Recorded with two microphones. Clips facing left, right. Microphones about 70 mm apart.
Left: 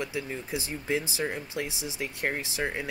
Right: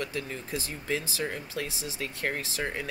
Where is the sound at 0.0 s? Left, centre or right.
Centre.